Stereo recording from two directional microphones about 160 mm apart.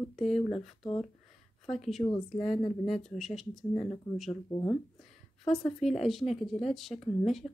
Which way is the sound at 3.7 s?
35° left (ahead or behind).